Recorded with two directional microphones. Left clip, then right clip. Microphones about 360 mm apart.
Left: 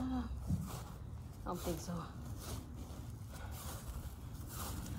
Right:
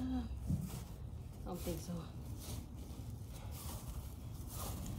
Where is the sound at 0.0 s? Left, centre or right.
Centre.